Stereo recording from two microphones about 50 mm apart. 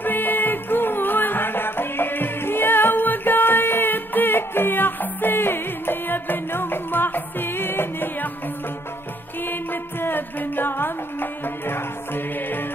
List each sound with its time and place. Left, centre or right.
0.0 s music: left
9.4 s music: left